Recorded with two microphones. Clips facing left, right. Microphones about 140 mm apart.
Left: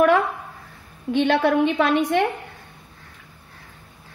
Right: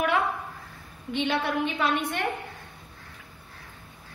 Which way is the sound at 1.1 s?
60° left (ahead or behind).